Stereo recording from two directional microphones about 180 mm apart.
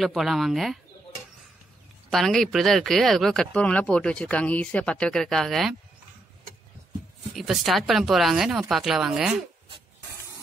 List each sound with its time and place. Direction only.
0.0 s speech: centre (ahead or behind)
2.0 s speech: centre (ahead or behind)
7.3 s speech: centre (ahead or behind)